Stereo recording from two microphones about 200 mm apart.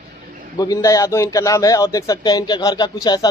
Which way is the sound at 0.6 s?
20° left (ahead or behind).